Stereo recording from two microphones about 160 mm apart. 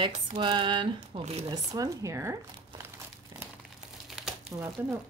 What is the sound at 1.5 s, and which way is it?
Speech, 20° right (ahead or behind).